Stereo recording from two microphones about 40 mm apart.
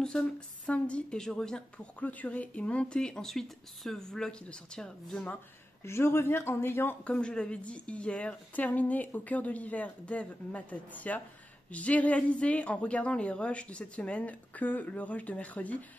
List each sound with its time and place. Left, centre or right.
0.0 s a sound: centre
0.7 s a woman's voice: left
1.1 s speech: centre
2.0 s a woman's voice: left; by 3.3 s centre
3.3 s speech: centre
5.9 s speech: left
7.1 s a woman's voice: left